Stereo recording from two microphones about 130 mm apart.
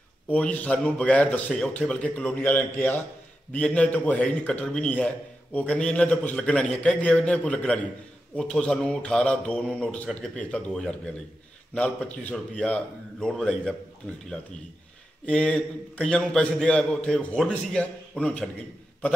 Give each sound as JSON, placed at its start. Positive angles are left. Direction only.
{"t": 0.3, "sound": "a man's voice", "side_deg": 10}
{"t": 15.2, "sound": "a man's voice", "side_deg": 10}